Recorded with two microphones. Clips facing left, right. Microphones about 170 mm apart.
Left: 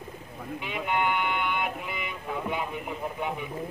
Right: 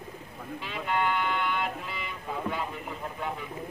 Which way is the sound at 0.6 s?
15° left (ahead or behind).